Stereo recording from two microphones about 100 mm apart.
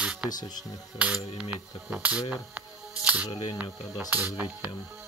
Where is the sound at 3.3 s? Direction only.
55° left (ahead or behind).